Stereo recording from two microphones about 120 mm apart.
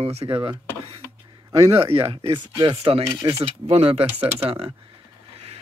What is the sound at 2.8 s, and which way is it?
Speech, 55° right (ahead or behind).